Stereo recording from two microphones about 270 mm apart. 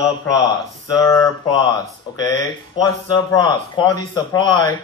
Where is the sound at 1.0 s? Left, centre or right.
Centre.